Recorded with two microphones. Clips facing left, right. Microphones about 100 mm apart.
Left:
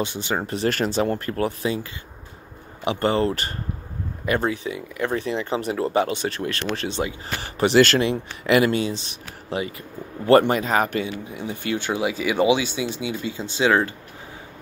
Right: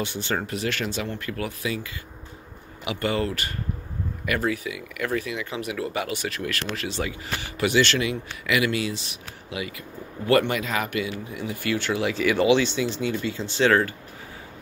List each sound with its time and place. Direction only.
0.0 s speech: 20° left (ahead or behind)
0.5 s speech: 35° left (ahead or behind)
11.2 s speech: 25° left (ahead or behind)